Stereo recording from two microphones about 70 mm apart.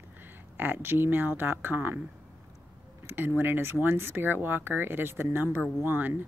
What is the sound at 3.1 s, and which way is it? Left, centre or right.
Speech, right.